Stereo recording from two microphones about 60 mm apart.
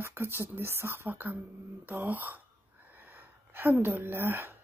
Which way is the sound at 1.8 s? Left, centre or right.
Right.